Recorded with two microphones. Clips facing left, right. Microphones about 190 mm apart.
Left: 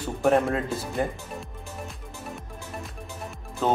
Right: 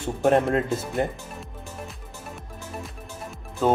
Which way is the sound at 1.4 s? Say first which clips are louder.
Even; centre (ahead or behind).